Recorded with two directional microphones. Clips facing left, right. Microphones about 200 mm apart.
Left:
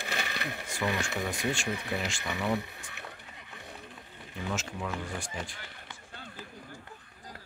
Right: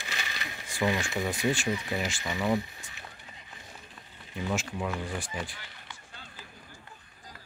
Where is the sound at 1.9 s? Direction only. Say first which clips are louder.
Right 2 dB; 5° right (ahead or behind).